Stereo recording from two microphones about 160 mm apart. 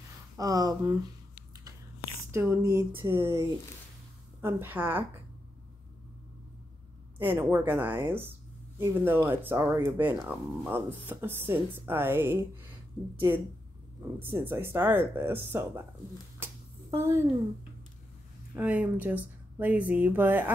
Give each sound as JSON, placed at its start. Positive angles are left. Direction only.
{"t": 0.4, "sound": "speech", "side_deg": -20}
{"t": 2.3, "sound": "speech", "side_deg": -15}
{"t": 7.2, "sound": "speech", "side_deg": -10}
{"t": 14.3, "sound": "speech", "side_deg": -15}
{"t": 16.9, "sound": "speech", "side_deg": -15}
{"t": 18.6, "sound": "speech", "side_deg": -10}